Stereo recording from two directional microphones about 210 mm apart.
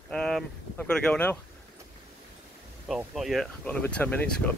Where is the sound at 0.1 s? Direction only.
Centre (ahead or behind).